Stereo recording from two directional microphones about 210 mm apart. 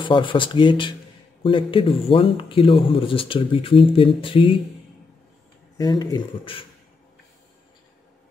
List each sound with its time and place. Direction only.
0.0 s speech: 25° left (ahead or behind)
5.8 s speech: 15° left (ahead or behind)